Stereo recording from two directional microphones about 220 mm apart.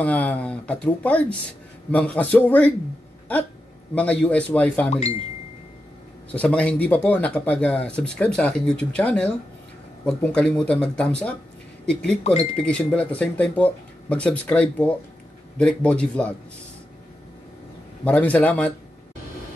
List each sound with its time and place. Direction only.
0.0 s a man's voice: 5° left (ahead or behind)
3.9 s speech: 5° left (ahead or behind)
4.8 s speech: 30° left (ahead or behind)
6.3 s speech: 5° left (ahead or behind)
12.2 s speech: 30° left (ahead or behind)
12.5 s speech: 5° left (ahead or behind)
18.0 s a man's voice: 5° left (ahead or behind)